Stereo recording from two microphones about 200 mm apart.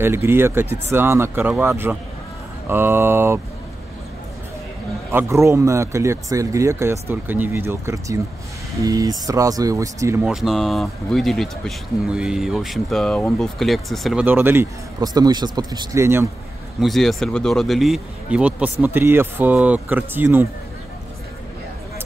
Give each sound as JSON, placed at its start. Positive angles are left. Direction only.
{"t": 0.0, "sound": "speech", "side_deg": -10}
{"t": 5.1, "sound": "speech", "side_deg": -15}
{"t": 10.3, "sound": "speech", "side_deg": 0}
{"t": 14.2, "sound": "speech", "side_deg": -10}
{"t": 16.8, "sound": "speech", "side_deg": 0}